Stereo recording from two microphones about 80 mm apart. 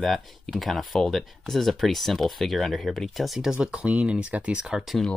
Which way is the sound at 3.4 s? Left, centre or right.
Centre.